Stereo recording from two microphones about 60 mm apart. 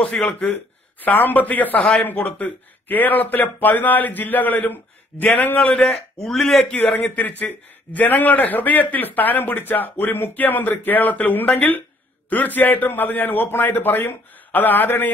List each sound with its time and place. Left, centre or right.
0.2 s a man's voice: centre
1.0 s a man's voice: left
5.9 s a man's voice: centre
6.7 s a man's voice: left